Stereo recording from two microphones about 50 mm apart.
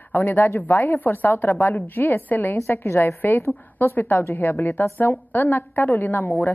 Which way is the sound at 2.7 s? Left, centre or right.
Left.